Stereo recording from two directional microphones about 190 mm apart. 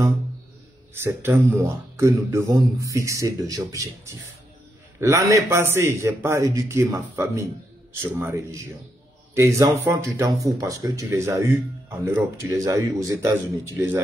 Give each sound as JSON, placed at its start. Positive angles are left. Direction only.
{"t": 1.0, "sound": "speech", "side_deg": -10}